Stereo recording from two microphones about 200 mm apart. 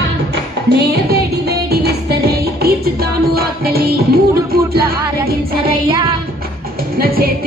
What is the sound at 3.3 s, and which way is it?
Music, 50° right (ahead or behind).